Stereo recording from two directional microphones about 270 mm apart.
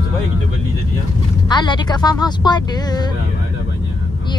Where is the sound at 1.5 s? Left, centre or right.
Centre.